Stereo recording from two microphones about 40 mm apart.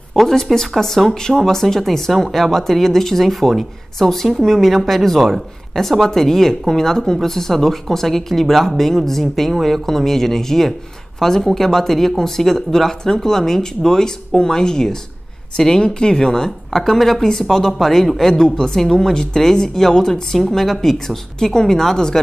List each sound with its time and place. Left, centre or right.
0.1 s speech: centre
21.4 s speech: centre